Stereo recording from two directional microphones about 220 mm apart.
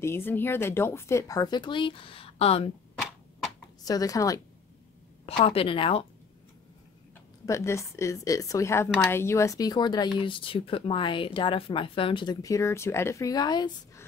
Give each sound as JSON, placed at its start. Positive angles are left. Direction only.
{"t": 0.0, "sound": "a woman's voice", "side_deg": 10}
{"t": 3.8, "sound": "a woman's voice", "side_deg": 15}
{"t": 5.2, "sound": "speech", "side_deg": 25}
{"t": 7.4, "sound": "a woman's voice", "side_deg": 15}